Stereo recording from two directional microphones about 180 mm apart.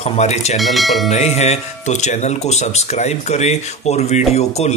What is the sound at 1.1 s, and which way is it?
A man's voice, 40° left (ahead or behind).